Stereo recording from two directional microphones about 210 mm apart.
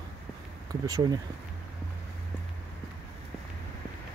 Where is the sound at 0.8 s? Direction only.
15° right (ahead or behind).